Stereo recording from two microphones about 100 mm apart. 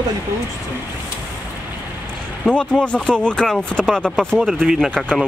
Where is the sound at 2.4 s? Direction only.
10° left (ahead or behind).